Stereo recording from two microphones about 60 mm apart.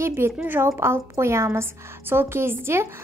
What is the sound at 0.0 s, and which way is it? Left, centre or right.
A woman's voice, right.